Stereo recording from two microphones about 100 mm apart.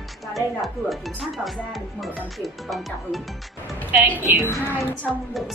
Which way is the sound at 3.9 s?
15° right (ahead or behind).